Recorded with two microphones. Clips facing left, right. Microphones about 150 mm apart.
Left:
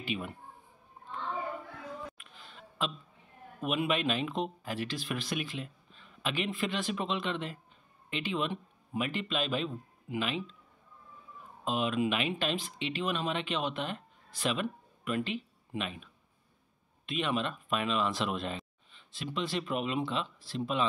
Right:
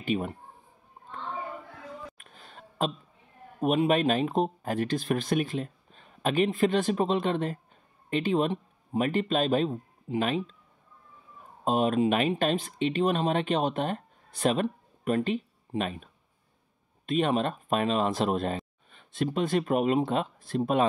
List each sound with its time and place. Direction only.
0.0 s speech: 40° right (ahead or behind)
2.1 s a sound: 45° right (ahead or behind)
3.6 s speech: 40° right (ahead or behind)
11.6 s speech: 45° right (ahead or behind)